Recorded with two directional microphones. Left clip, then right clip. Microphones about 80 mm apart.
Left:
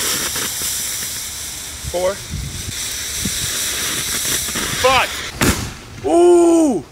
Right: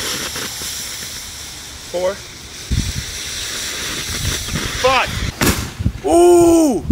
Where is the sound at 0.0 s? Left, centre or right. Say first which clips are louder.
Left 2 dB; centre.